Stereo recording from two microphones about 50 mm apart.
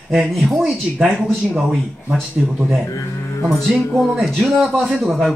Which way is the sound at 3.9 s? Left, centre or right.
Centre.